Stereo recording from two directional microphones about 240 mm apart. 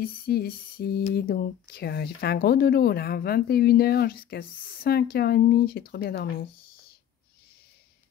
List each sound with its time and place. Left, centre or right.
0.0 s speech: left